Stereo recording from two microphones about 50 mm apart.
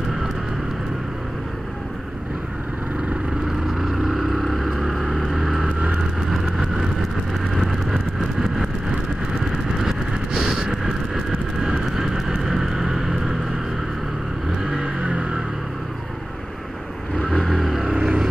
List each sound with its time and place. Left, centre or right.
3.7 s vehicle: centre
9.8 s vehicle: centre
14.6 s vehicle: centre
15.0 s a sound: right
17.2 s vehicle: centre
17.5 s vehicle: centre
17.8 s vehicle: centre